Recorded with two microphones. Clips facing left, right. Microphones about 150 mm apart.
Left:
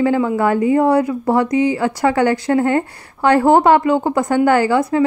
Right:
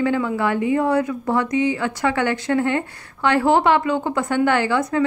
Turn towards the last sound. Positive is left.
turn(degrees=35)  # may be behind; listen again after turning